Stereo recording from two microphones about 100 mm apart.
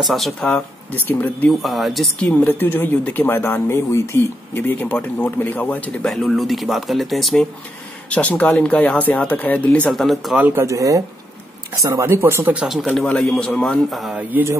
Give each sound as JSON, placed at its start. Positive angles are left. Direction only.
{"t": 0.0, "sound": "a man's voice", "side_deg": 0}
{"t": 1.0, "sound": "speech", "side_deg": 15}
{"t": 1.5, "sound": "a man's voice", "side_deg": 0}
{"t": 2.1, "sound": "speech", "side_deg": 15}
{"t": 6.0, "sound": "a man's voice", "side_deg": 0}
{"t": 8.1, "sound": "speech", "side_deg": 15}
{"t": 9.8, "sound": "a man's voice", "side_deg": 0}
{"t": 10.3, "sound": "speech", "side_deg": -15}
{"t": 10.6, "sound": "speech", "side_deg": -35}
{"t": 12.5, "sound": "a man's voice", "side_deg": -5}
{"t": 14.3, "sound": "speech", "side_deg": -15}